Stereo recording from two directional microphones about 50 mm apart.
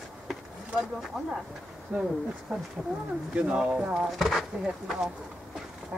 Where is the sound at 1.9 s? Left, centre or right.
Right.